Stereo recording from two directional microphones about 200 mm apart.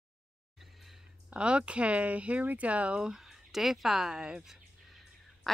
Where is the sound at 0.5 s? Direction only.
Centre (ahead or behind).